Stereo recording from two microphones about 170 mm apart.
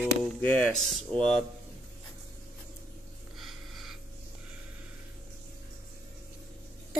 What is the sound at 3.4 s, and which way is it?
Snort, centre (ahead or behind).